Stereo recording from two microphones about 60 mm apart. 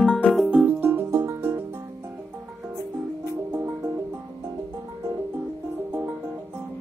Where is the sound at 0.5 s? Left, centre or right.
Right.